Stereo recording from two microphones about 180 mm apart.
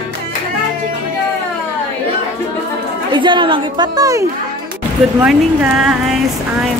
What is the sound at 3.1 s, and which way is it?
A woman's voice, 25° right (ahead or behind).